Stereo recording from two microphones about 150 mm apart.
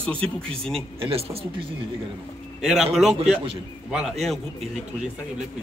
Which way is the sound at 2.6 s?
5° right (ahead or behind).